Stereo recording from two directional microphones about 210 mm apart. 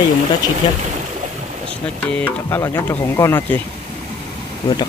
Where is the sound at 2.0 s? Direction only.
10° left (ahead or behind).